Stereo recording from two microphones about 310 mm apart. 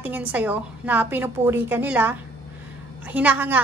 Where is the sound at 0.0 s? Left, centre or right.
Centre.